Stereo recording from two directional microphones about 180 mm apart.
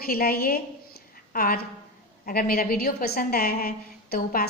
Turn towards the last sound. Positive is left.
turn(degrees=55)  # may be behind; listen again after turning